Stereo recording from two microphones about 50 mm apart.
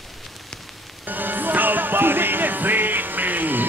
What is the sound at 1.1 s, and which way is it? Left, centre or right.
Music, right.